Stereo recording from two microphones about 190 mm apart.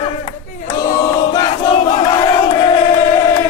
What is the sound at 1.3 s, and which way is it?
Crowd, 25° left (ahead or behind).